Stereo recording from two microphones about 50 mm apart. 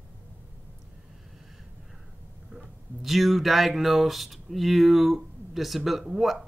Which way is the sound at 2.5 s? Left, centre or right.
Centre.